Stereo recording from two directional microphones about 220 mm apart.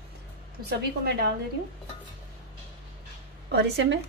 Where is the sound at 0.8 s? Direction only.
50° right (ahead or behind).